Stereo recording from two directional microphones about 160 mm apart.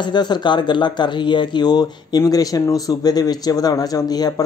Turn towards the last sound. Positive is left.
turn(degrees=25)  # may be behind; listen again after turning